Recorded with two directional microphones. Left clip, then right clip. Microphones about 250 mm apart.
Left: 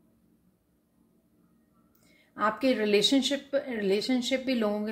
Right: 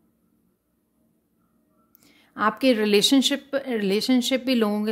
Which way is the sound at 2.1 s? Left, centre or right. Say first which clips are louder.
Right 5 dB; right.